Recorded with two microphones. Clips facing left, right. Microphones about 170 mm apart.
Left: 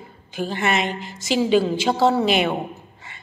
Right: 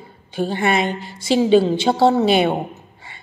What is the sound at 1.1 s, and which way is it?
A woman's voice, 30° right (ahead or behind).